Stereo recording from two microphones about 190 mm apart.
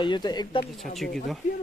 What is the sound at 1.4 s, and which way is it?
Speech, 40° left (ahead or behind).